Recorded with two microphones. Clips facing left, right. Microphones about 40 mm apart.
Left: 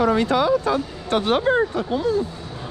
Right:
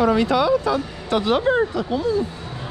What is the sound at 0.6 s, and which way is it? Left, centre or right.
Speech, left.